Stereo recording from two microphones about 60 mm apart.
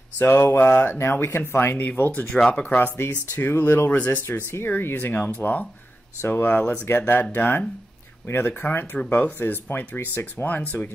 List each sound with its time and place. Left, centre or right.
0.2 s speech: left
2.3 s speech: centre
2.6 s speech: left